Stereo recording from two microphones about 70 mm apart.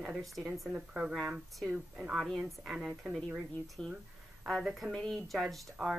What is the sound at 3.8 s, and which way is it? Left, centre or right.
Speech, centre.